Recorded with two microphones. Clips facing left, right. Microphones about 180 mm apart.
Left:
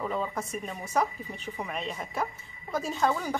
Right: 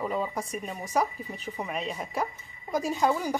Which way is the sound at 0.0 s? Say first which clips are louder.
Right 1 dB; 10° right (ahead or behind).